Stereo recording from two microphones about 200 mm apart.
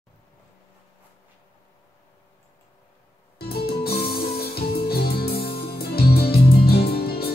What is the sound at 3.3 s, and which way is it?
Music, 50° left (ahead or behind).